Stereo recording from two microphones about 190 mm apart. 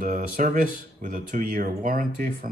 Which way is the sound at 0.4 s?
45° right (ahead or behind).